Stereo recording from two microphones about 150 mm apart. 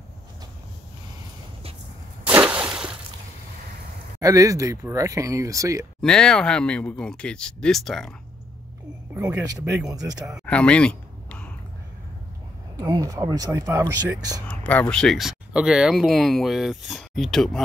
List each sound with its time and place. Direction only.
2.2 s a sound: 10° right (ahead or behind)
4.2 s speech: 25° right (ahead or behind)
5.9 s speech: 5° left (ahead or behind)
9.1 s speech: 15° right (ahead or behind)
9.9 s speech: 25° right (ahead or behind)
10.4 s a sound: 10° left (ahead or behind)
12.7 s speech: 25° right (ahead or behind)
14.5 s speech: 10° left (ahead or behind)